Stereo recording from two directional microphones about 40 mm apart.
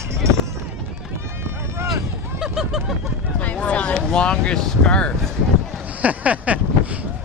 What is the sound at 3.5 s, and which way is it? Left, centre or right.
Speech, left.